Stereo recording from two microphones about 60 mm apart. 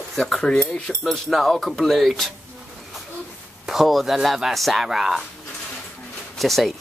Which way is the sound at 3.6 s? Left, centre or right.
Centre.